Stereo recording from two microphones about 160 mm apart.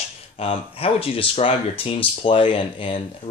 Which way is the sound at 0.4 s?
35° left (ahead or behind).